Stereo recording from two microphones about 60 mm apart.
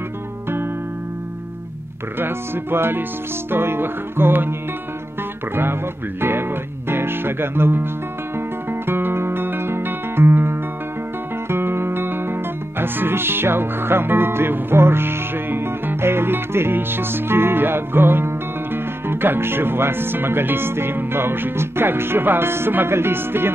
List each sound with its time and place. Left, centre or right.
2.1 s music: right
6.2 s music: right
8.4 s guitar: right
11.4 s music: right